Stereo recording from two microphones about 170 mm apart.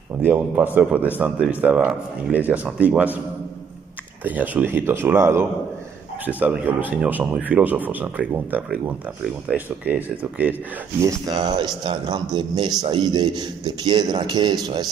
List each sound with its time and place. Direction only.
0.2 s speech: 10° right (ahead or behind)
4.2 s speech: 10° right (ahead or behind)
11.0 s speech: 20° right (ahead or behind)